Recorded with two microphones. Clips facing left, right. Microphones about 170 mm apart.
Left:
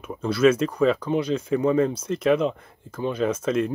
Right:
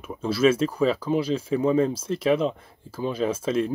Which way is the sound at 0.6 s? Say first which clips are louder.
Left 1 dB; 5° right (ahead or behind).